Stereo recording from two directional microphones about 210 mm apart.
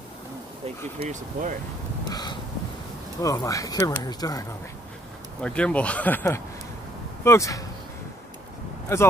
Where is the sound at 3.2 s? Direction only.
15° left (ahead or behind).